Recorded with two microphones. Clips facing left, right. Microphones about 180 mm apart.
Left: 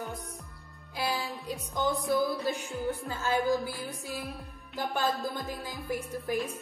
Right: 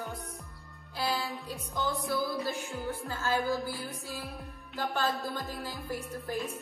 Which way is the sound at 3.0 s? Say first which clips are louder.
Left 1 dB; 20° left (ahead or behind).